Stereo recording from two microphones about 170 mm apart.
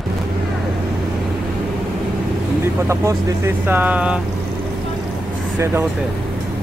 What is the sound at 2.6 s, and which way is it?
Speech, 15° right (ahead or behind).